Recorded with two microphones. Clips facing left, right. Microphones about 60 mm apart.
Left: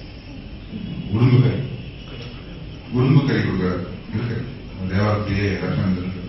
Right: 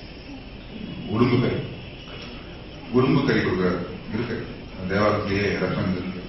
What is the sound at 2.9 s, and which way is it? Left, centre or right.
A man's voice, centre.